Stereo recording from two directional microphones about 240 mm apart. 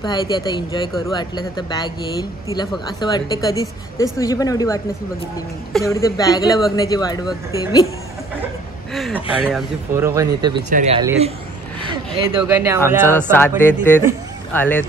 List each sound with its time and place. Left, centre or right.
0.0 s speech: centre
5.9 s speech: centre
8.9 s speech: centre
9.9 s speech: centre
10.7 s speech: right
12.5 s speech: centre
13.3 s speech: centre